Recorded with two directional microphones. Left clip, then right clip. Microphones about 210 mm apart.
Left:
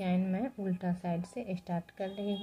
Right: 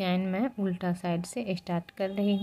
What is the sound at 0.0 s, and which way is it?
Speech, 35° right (ahead or behind).